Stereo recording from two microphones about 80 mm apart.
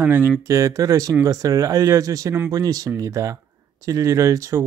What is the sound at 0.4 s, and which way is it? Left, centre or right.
Speech, right.